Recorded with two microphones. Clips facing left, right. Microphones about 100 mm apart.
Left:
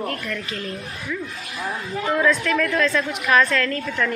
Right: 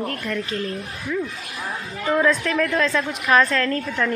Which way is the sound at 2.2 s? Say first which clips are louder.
Left 2 dB; 25° right (ahead or behind).